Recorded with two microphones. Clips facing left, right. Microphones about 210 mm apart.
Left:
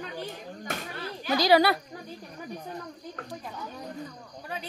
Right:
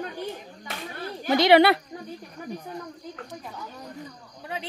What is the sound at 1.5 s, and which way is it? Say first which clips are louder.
Speech: right 4 dB; 65° right (ahead or behind).